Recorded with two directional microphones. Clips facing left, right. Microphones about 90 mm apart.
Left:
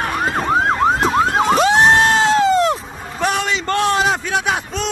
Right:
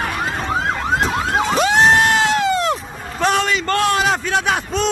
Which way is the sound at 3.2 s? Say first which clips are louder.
Right 2 dB; 10° left (ahead or behind).